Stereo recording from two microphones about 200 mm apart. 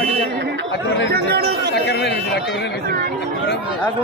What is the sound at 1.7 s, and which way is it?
A man's voice, 55° left (ahead or behind).